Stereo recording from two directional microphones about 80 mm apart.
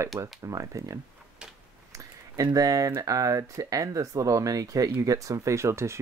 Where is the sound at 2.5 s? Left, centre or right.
Right.